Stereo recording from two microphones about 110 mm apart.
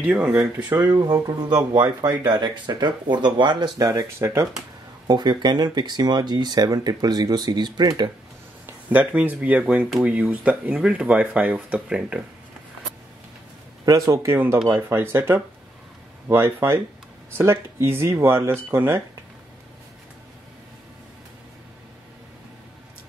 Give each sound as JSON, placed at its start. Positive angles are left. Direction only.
{"t": 0.0, "sound": "speech", "side_deg": -15}
{"t": 1.7, "sound": "speech", "side_deg": -40}
{"t": 5.0, "sound": "speech", "side_deg": -40}
{"t": 8.8, "sound": "speech", "side_deg": -15}
{"t": 13.8, "sound": "speech", "side_deg": -30}